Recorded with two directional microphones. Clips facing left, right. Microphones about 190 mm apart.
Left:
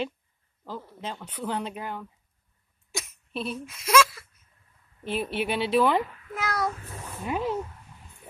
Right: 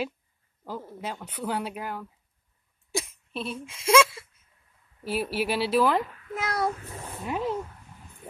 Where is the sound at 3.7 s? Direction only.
30° right (ahead or behind).